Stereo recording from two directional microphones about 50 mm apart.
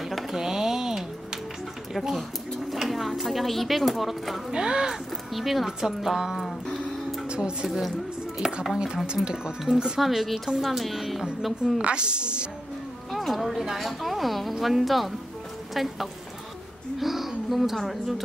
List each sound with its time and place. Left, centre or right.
0.0 s music: centre
2.0 s a woman's voice: centre
4.5 s speech: centre
5.3 s a woman's voice: centre
6.3 s music: centre
7.2 s speech: centre
9.9 s a woman's voice: centre
11.8 s a woman's voice: centre
13.1 s a woman's voice: centre